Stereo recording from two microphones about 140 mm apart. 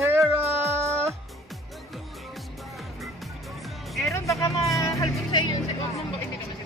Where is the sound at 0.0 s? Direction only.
15° right (ahead or behind).